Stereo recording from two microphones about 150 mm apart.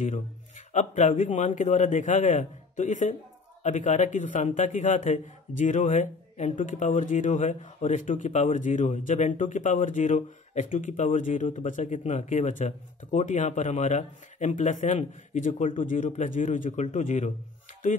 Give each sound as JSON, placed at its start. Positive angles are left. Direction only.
{"t": 0.0, "sound": "a man's voice", "side_deg": 50}